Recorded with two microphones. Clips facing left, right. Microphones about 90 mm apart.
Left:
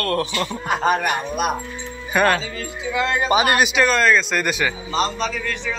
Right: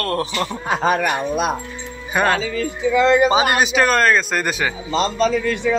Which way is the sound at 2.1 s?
20° right (ahead or behind).